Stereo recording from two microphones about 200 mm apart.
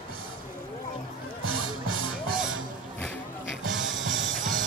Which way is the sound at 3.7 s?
70° right (ahead or behind).